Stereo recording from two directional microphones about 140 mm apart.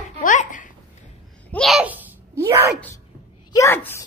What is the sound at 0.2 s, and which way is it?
Babbling, 70° left (ahead or behind).